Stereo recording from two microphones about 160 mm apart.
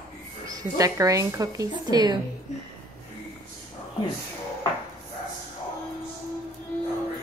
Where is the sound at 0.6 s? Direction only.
20° right (ahead or behind).